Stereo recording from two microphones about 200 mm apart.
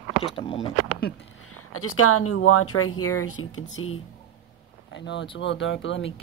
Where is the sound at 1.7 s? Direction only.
90° left.